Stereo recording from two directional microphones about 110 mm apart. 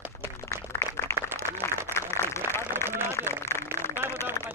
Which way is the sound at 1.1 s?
20° right (ahead or behind).